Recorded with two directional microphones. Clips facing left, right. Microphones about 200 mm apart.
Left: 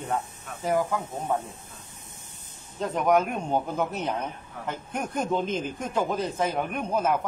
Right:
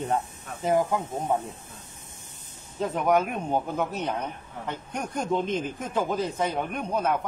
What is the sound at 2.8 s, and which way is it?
Speech, centre (ahead or behind).